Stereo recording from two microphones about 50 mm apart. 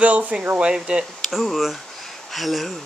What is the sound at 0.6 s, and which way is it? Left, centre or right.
Speech, centre.